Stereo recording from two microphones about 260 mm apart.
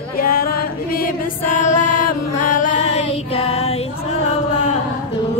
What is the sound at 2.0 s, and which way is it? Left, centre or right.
Chant, left.